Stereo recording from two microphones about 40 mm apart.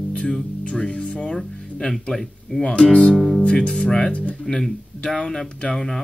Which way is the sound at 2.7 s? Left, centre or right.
Left.